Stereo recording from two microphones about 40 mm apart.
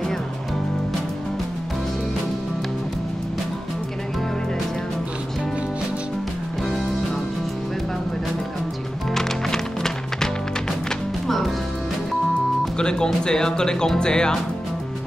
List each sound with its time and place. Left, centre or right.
9.1 s music: centre
12.7 s speech: left